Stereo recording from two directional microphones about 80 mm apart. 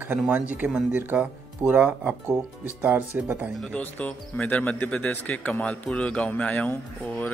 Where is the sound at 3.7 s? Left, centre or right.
Centre.